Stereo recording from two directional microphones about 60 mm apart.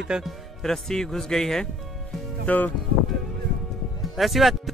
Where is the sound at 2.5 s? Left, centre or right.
Left.